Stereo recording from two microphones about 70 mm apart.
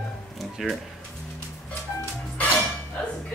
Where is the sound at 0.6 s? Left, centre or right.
Centre.